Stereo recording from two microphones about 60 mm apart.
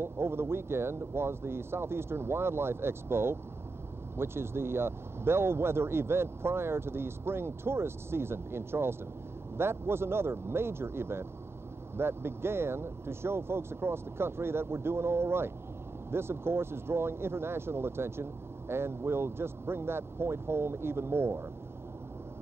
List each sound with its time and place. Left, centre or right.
0.0 s speech: right